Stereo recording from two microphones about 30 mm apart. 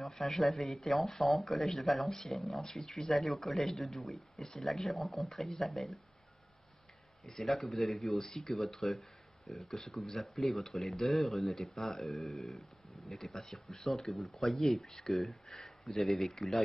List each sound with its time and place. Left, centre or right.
0.2 s speech: centre
2.0 s speech: centre
2.3 s speech: centre
7.4 s speech: centre
8.5 s speech: centre
14.6 s speech: centre